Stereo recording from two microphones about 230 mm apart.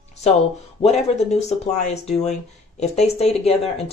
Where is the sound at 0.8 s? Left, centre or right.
Left.